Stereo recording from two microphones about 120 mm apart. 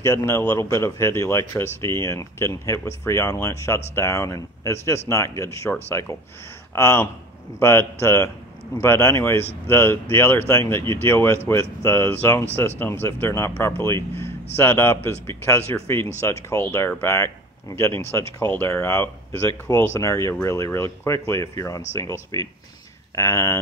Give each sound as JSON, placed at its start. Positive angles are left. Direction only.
{"t": 0.0, "sound": "speech", "side_deg": 25}